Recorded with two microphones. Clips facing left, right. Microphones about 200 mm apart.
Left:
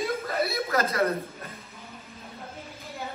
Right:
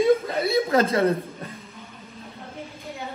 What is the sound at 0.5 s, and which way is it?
Speech, 30° right (ahead or behind).